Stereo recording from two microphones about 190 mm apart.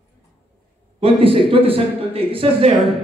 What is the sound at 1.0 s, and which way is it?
A man's voice, 30° right (ahead or behind).